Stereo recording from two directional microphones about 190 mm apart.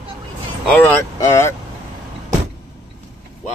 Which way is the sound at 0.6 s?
10° left (ahead or behind).